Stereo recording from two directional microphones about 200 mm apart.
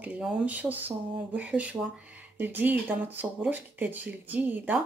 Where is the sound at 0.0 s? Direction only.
5° right (ahead or behind).